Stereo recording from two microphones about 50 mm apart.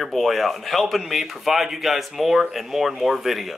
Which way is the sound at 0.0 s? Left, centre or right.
Centre.